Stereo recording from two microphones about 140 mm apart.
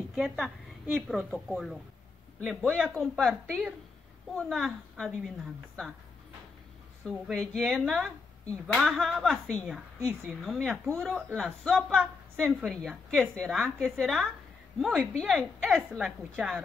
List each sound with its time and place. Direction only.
0.1 s speech: centre (ahead or behind)
7.1 s speech: 5° left (ahead or behind)